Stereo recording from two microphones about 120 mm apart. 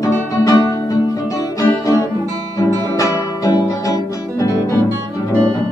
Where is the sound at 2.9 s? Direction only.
30° left (ahead or behind).